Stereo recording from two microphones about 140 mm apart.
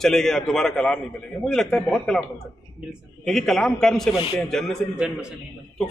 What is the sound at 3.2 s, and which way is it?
A man's voice, 5° left (ahead or behind).